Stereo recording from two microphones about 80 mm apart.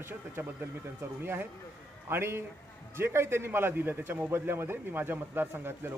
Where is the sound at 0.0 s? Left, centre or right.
Right.